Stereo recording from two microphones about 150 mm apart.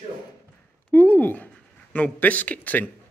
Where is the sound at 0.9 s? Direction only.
10° left (ahead or behind).